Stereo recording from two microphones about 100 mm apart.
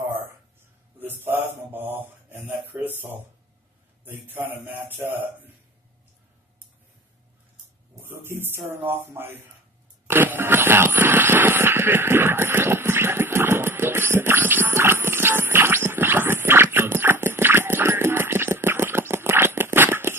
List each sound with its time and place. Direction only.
0.9 s mantra: 20° right (ahead or behind)
2.0 s speech: 20° right (ahead or behind)
4.0 s speech: 20° right (ahead or behind)
8.1 s speech: 25° right (ahead or behind)
10.0 s a sound: 20° right (ahead or behind)